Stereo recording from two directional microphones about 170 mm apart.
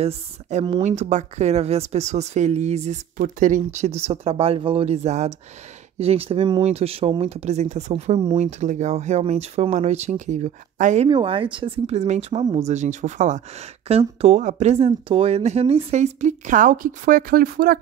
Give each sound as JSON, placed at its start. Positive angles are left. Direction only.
{"t": 0.0, "sound": "speech", "side_deg": -35}
{"t": 11.1, "sound": "speech", "side_deg": -30}